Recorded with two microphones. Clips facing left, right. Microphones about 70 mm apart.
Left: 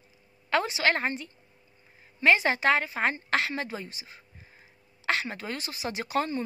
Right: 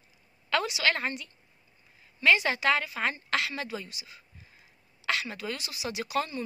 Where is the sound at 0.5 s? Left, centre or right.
Left.